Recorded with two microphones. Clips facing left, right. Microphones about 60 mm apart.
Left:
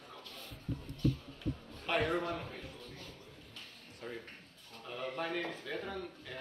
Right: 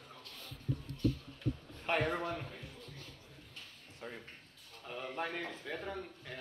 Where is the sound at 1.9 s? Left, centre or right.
Right.